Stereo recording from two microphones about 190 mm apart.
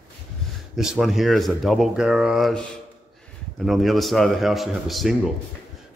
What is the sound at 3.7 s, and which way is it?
Speech, centre (ahead or behind).